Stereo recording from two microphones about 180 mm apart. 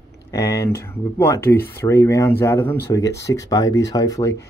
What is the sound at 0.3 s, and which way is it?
Speech, 15° left (ahead or behind).